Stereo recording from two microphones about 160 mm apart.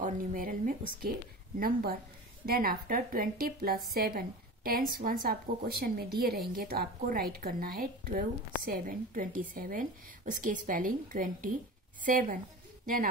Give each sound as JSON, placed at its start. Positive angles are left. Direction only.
{"t": 0.0, "sound": "a woman's voice", "side_deg": -55}